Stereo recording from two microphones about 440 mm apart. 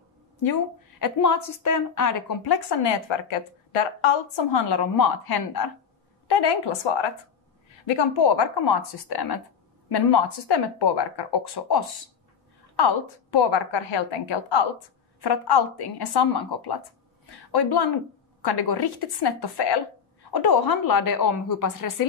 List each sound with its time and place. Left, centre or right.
0.4 s a woman's voice: left
6.2 s a woman's voice: left
15.1 s a woman's voice: left